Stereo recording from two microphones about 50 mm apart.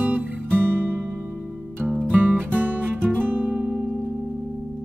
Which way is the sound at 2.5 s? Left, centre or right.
Right.